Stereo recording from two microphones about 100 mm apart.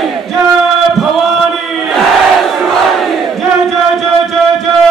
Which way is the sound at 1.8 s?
Centre (ahead or behind).